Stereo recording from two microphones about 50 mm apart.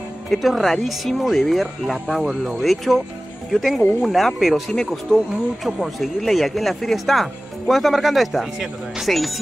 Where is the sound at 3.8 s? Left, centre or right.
Left.